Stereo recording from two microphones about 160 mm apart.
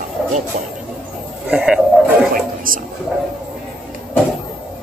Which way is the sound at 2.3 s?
60° right (ahead or behind).